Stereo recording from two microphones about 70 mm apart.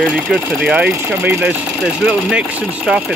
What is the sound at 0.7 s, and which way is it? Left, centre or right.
Speech, centre.